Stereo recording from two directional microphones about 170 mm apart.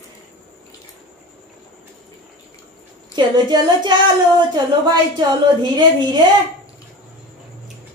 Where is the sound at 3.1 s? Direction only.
25° right (ahead or behind).